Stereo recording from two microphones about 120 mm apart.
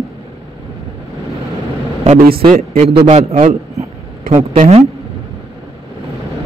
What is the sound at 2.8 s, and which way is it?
Speech, 90° right.